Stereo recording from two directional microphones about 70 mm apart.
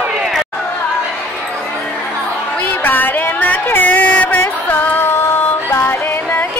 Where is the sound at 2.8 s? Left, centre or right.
Left.